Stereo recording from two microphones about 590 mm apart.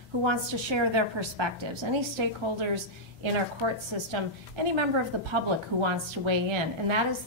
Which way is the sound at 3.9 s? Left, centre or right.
Right.